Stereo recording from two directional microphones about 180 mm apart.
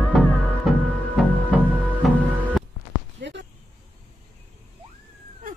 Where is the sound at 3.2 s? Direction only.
75° right (ahead or behind).